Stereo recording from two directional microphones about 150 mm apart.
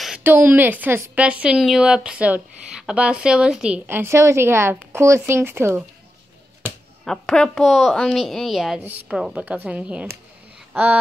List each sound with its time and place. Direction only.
0.2 s a woman's voice: 10° right (ahead or behind)
7.1 s speech: 5° left (ahead or behind)
10.7 s a sound: 10° right (ahead or behind)